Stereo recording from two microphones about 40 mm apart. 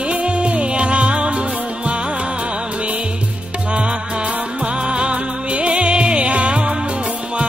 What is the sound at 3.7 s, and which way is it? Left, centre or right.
Music, right.